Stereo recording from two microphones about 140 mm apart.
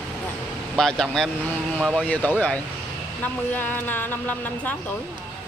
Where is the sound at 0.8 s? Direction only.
5° left (ahead or behind).